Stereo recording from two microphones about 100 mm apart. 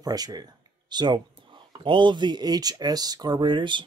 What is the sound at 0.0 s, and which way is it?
Speech, 40° right (ahead or behind).